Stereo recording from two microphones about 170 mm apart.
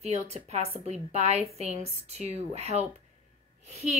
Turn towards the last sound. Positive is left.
turn(degrees=-40)  # may be behind; listen again after turning